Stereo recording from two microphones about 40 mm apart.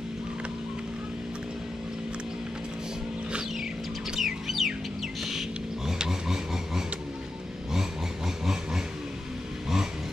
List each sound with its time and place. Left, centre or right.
4.2 s music: centre
5.9 s filing: centre